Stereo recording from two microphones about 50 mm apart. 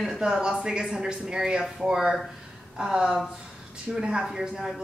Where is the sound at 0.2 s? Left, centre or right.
Centre.